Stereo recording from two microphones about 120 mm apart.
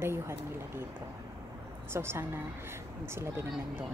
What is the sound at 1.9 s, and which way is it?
A woman's voice, 20° right (ahead or behind).